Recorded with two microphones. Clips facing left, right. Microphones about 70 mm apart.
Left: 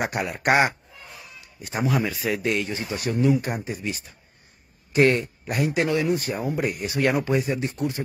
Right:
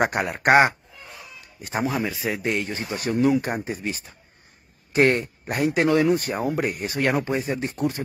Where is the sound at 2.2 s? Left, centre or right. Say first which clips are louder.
Left 1 dB; right.